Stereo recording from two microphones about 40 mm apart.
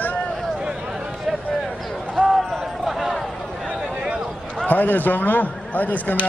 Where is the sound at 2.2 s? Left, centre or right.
Centre.